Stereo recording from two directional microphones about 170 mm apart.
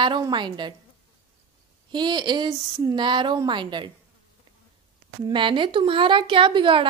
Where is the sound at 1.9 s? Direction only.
25° right (ahead or behind).